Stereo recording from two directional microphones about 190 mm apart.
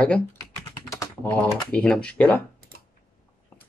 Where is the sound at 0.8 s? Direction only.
15° left (ahead or behind).